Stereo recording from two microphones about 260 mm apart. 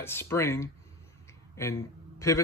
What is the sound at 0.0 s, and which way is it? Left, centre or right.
A man's voice, centre.